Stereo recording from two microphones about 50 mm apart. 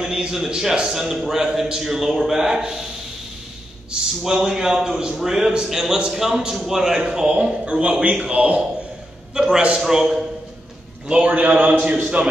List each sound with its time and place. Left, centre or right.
0.0 s a man's voice: centre
4.2 s a man's voice: centre
11.3 s a man's voice: right